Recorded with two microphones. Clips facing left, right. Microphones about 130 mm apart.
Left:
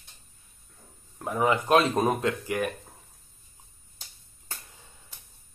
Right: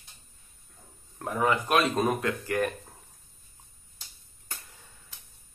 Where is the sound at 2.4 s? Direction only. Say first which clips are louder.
Right 1 dB; 15° left (ahead or behind).